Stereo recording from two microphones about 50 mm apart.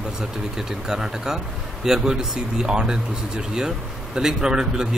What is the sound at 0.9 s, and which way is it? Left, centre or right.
Speech, centre.